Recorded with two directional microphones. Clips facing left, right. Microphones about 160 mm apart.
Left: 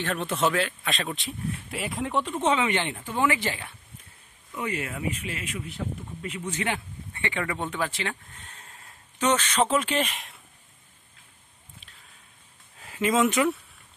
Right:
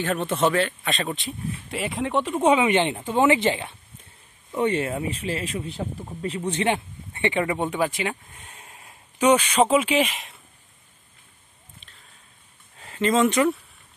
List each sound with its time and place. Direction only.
0.0 s speech: 5° right (ahead or behind)
12.7 s speech: 5° left (ahead or behind)